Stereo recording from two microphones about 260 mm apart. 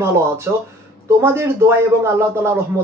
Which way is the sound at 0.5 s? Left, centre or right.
Centre.